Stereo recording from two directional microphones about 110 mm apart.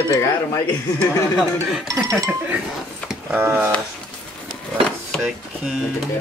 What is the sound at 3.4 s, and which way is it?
Speech, 20° right (ahead or behind).